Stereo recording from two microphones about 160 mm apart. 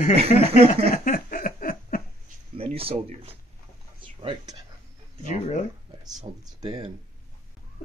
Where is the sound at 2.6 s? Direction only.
35° right (ahead or behind).